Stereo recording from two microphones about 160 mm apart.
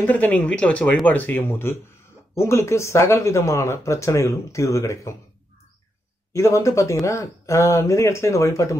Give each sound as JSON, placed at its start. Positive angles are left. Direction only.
{"t": 0.0, "sound": "speech", "side_deg": 10}
{"t": 6.3, "sound": "speech", "side_deg": 20}